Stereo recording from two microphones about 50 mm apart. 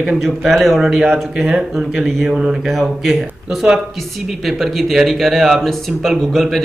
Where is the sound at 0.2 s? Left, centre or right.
Centre.